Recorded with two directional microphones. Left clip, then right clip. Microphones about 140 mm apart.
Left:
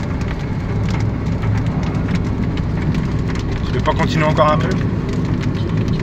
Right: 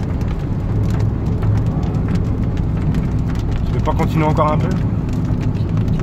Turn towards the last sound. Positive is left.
turn(degrees=-20)  # may be behind; listen again after turning